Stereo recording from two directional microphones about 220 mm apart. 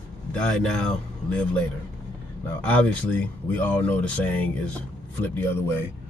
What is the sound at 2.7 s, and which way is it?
Speech, 5° left (ahead or behind).